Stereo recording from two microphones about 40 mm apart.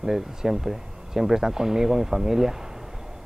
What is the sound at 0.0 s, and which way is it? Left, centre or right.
A man's voice, centre.